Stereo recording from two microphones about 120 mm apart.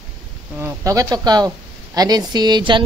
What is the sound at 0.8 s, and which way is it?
A woman's voice, 30° right (ahead or behind).